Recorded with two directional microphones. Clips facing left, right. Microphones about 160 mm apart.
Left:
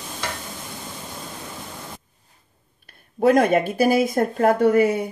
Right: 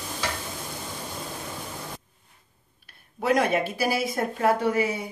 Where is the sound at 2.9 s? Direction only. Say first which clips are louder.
Left 7 dB; 50° left (ahead or behind).